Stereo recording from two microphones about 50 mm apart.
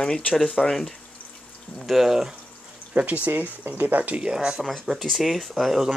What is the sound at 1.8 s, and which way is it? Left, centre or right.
Speech, centre.